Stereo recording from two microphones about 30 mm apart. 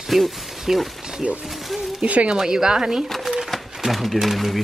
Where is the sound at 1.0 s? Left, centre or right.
Centre.